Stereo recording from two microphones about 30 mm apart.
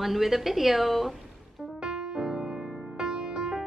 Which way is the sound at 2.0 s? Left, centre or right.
Centre.